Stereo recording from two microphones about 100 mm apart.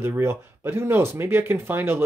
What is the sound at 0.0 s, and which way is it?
Speech, 25° right (ahead or behind).